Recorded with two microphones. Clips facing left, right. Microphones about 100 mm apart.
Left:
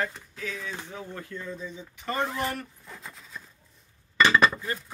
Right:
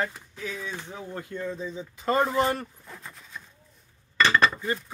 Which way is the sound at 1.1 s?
30° right (ahead or behind).